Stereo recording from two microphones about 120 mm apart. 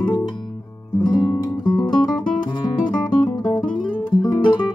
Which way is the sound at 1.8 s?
35° left (ahead or behind).